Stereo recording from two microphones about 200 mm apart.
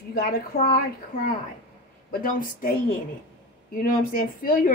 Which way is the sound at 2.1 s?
45° left (ahead or behind).